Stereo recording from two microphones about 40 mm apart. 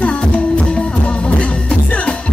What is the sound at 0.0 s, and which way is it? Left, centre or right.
Music, left.